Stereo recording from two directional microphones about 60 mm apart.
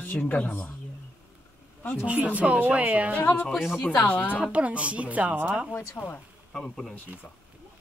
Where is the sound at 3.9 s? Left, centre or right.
Left.